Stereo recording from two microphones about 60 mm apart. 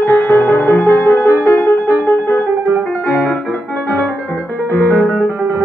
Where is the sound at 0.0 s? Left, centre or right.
Left.